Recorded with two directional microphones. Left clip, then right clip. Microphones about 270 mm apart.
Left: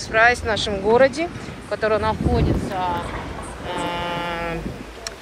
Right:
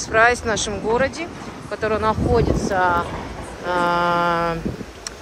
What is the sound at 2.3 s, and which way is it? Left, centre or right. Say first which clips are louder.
Speech: right 4 dB; right.